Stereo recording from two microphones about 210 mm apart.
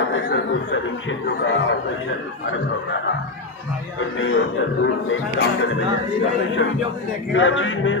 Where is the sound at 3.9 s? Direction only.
70° left (ahead or behind).